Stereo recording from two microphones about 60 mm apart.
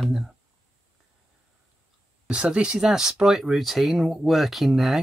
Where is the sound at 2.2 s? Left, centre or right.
Centre.